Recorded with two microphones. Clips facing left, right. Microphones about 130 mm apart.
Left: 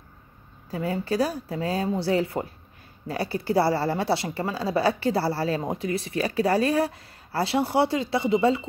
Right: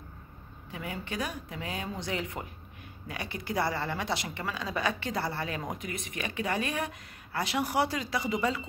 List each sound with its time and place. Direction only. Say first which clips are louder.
0.7 s a woman's voice: left 11 dB; 35° left (ahead or behind)